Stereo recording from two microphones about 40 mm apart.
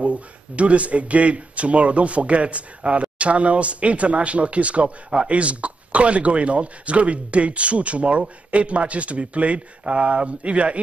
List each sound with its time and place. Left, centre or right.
0.0 s speech: right